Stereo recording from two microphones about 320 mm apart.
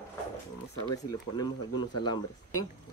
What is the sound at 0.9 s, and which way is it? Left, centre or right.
Speech, centre.